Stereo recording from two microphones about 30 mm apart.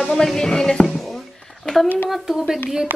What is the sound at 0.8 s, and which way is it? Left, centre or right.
Music, centre.